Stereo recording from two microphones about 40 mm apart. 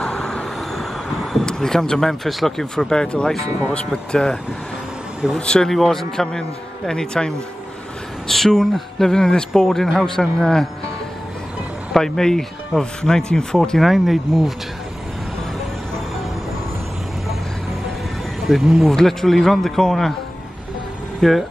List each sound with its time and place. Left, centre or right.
0.0 s vehicle: left
0.7 s vehicle: centre
1.4 s speech: centre
2.6 s speech: centre
5.4 s speech: left
11.9 s speech: centre
13.7 s speech: centre
18.4 s speech: centre
18.9 s speech: centre
21.2 s speech: centre